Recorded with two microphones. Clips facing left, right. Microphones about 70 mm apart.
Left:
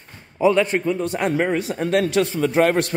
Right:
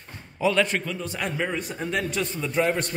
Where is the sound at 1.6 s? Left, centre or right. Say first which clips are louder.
Left 8 dB; left.